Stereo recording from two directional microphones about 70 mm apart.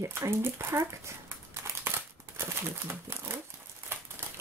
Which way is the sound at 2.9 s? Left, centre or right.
Right.